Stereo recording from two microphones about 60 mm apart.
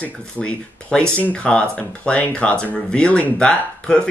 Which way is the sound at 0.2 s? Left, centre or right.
Centre.